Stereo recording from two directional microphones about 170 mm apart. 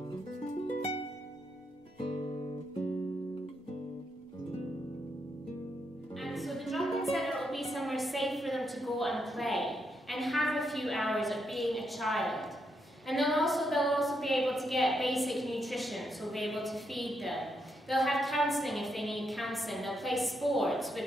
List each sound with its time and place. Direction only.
0.7 s music: 35° left (ahead or behind)
2.1 s guitar: 40° left (ahead or behind)
6.1 s music: centre (ahead or behind)
13.0 s a woman's voice: centre (ahead or behind)